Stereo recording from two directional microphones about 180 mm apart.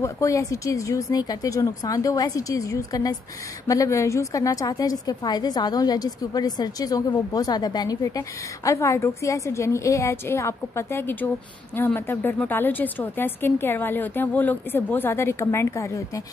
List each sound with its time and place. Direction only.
0.0 s a woman's voice: 15° left (ahead or behind)